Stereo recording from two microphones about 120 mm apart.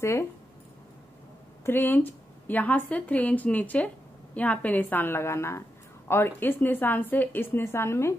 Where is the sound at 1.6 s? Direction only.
15° left (ahead or behind).